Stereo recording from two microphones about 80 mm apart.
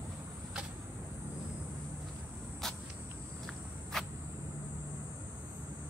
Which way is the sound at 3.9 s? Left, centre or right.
Centre.